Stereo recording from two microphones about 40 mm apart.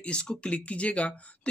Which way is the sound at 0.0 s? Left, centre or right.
Left.